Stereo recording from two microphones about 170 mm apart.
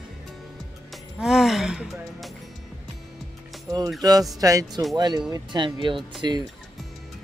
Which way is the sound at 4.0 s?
20° right (ahead or behind).